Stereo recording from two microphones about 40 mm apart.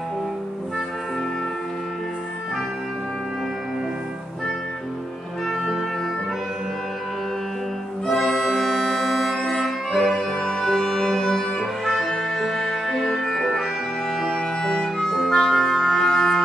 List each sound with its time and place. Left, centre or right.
8.4 s music: centre
15.1 s music: centre